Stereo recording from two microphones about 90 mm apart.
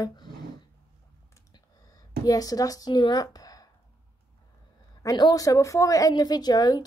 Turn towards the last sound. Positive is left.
turn(degrees=50)  # may be behind; listen again after turning